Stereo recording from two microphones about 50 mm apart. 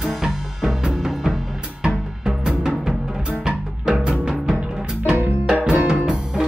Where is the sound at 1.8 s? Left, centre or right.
Centre.